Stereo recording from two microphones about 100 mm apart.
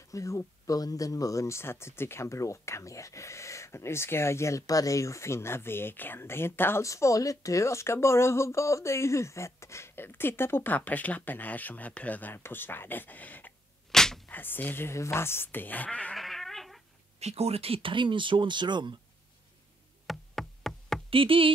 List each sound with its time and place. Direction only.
0.1 s speech: 30° left (ahead or behind)
13.9 s a sound: 5° left (ahead or behind)
14.3 s speech: 20° left (ahead or behind)
16.2 s a sound: centre (ahead or behind)
17.2 s speech: 90° right; by 18.9 s 50° right (ahead or behind)
20.1 s knock: 5° left (ahead or behind)
21.1 s speech: 60° right (ahead or behind)